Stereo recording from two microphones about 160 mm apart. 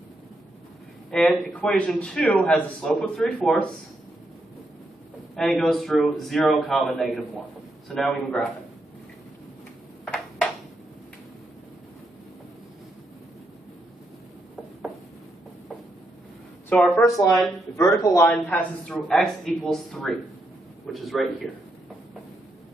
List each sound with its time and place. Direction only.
1.1 s a man's voice: 5° left (ahead or behind)
5.3 s a man's voice: centre (ahead or behind)
16.6 s speech: 5° left (ahead or behind)
17.7 s speech: 20° left (ahead or behind)
18.2 s a man's voice: 5° left (ahead or behind)